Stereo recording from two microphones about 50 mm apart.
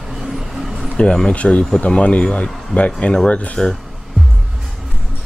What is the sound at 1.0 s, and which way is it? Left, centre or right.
Speech, centre.